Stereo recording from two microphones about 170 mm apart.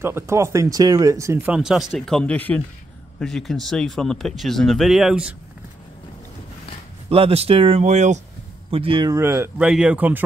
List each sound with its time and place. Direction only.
0.0 s speech: 15° right (ahead or behind)
7.1 s speech: 35° right (ahead or behind)
8.6 s speech: 30° right (ahead or behind)
9.1 s speech: 15° right (ahead or behind)